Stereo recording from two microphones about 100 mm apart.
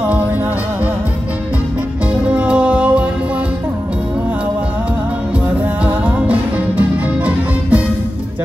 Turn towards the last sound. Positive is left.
turn(degrees=-15)  # may be behind; listen again after turning